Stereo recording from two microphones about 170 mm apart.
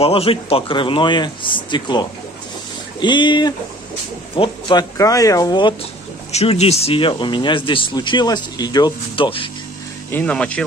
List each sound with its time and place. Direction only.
0.0 s speech: 35° left (ahead or behind)
10.1 s speech: 5° left (ahead or behind)